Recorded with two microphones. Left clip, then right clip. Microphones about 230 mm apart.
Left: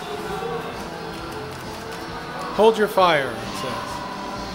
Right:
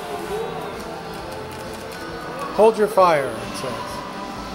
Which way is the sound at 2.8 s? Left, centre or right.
Centre.